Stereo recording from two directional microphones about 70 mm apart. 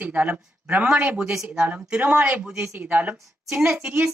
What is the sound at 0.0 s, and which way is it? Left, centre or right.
A woman's voice, centre.